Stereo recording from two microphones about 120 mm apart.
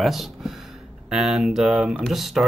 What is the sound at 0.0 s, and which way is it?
Speech, centre (ahead or behind).